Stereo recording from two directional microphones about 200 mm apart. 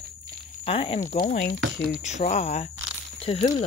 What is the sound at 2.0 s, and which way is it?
Speech, 35° left (ahead or behind).